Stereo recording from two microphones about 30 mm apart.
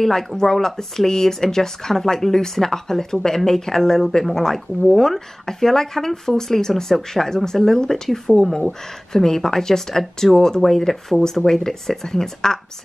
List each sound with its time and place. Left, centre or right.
0.4 s speech: centre
10.9 s speech: centre